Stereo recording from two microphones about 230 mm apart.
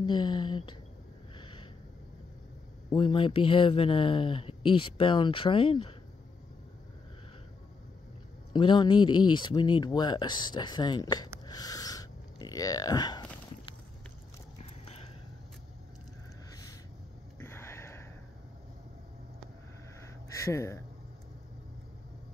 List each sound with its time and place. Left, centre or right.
0.0 s speech: centre
1.4 s snort: left
2.9 s speech: left
8.5 s speech: left
11.4 s a sound: centre
17.4 s a sound: centre
20.3 s speech: centre